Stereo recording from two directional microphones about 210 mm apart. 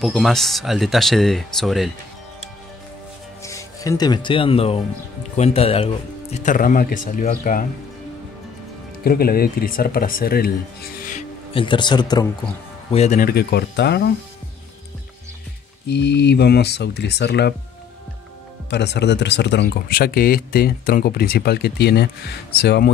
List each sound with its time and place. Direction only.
0.0 s speech: centre (ahead or behind)
3.4 s speech: 15° left (ahead or behind)
6.3 s speech: 40° left (ahead or behind)
9.0 s speech: 45° left (ahead or behind)
11.5 s speech: 25° left (ahead or behind)
12.9 s speech: 35° left (ahead or behind); by 14.1 s 50° left (ahead or behind)
15.9 s speech: 55° left (ahead or behind)
18.7 s speech: 55° left (ahead or behind)